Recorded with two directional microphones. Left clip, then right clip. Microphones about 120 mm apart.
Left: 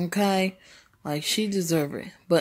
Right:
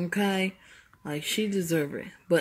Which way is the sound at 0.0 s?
40° left (ahead or behind).